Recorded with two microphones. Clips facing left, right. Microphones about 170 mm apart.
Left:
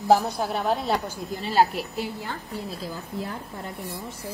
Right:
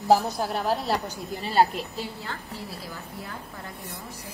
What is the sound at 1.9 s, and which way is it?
A woman's voice, 20° left (ahead or behind).